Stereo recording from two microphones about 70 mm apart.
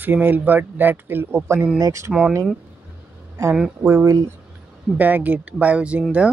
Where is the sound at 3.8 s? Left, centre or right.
Right.